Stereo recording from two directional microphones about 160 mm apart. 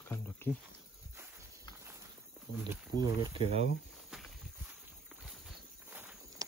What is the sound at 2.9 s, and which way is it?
Speech, 25° right (ahead or behind).